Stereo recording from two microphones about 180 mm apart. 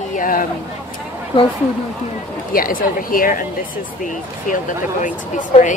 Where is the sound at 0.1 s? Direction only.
50° left (ahead or behind).